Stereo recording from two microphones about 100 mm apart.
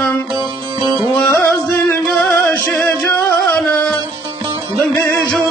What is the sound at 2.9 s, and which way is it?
Music, 30° left (ahead or behind).